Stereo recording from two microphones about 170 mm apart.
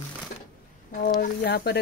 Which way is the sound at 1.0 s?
70° left (ahead or behind).